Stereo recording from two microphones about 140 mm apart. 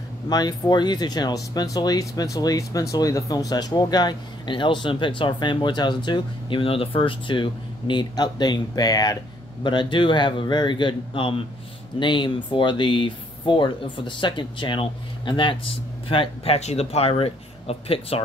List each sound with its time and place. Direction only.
0.3 s speech: 30° left (ahead or behind); by 18.2 s 45° left (ahead or behind)